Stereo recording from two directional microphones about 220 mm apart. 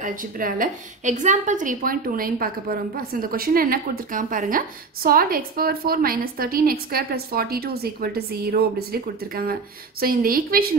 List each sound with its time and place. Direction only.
0.0 s a woman's voice: 40° right (ahead or behind)